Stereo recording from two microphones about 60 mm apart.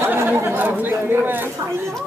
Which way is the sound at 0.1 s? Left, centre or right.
Right.